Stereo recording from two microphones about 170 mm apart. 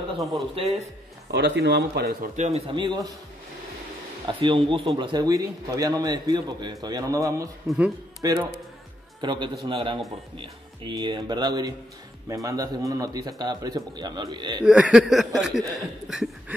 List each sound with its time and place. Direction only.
0.6 s a man's voice: 35° right (ahead or behind)
1.3 s speech: 90° right; by 2.1 s 75° right (ahead or behind)
2.3 s a man's voice: 45° right (ahead or behind)
2.7 s speech: 25° right (ahead or behind)
4.4 s speech: 30° right (ahead or behind)
7.6 s a sound: 5° right (ahead or behind)
8.2 s speech: 20° right (ahead or behind)
14.6 s a sound: 5° right (ahead or behind)